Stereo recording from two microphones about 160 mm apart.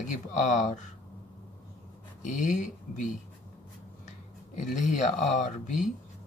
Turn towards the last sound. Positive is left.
turn(degrees=50)  # may be behind; listen again after turning